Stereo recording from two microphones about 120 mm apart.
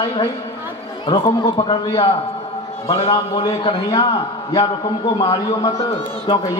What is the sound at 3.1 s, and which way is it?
A man's voice, 40° left (ahead or behind).